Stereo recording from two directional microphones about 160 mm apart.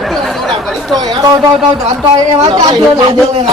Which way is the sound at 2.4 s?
25° right (ahead or behind).